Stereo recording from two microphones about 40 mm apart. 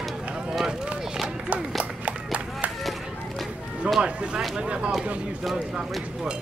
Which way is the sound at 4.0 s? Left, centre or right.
Right.